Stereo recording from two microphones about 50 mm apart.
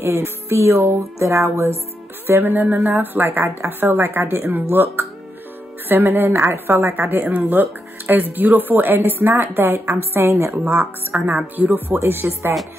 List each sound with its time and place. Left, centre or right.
0.0 s music: right
2.2 s a woman's voice: right
10.7 s a woman's voice: right
11.9 s a woman's voice: right